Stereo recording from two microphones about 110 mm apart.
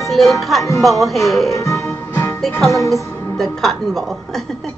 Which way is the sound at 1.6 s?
30° left (ahead or behind).